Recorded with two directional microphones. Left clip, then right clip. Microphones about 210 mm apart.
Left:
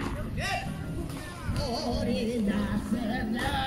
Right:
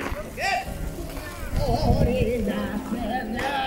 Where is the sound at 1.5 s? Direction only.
40° left (ahead or behind).